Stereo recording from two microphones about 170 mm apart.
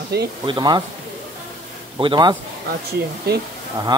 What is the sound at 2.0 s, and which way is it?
Speech, 25° right (ahead or behind).